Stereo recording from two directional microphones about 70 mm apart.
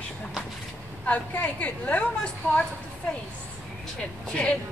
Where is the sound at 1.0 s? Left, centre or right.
Left.